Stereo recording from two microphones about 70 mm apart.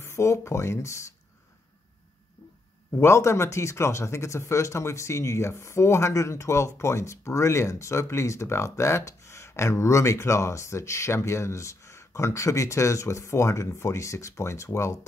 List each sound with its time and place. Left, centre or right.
0.0 s speech: left
3.0 s speech: left